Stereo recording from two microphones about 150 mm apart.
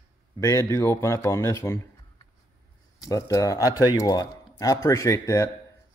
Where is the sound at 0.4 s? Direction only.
20° left (ahead or behind).